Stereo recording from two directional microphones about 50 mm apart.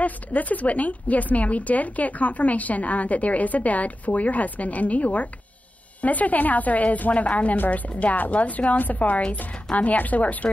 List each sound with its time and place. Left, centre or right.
0.0 s a woman's voice: left